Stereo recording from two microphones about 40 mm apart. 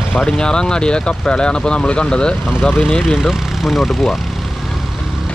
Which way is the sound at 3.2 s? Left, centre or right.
Centre.